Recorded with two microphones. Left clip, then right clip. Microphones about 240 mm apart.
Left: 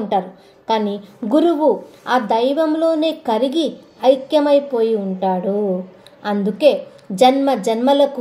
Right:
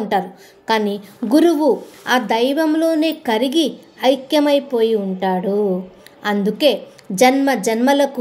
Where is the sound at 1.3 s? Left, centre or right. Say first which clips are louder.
Right 1 dB; right.